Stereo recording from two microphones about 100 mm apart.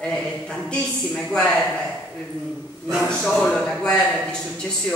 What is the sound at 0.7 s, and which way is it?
Speech, 10° left (ahead or behind).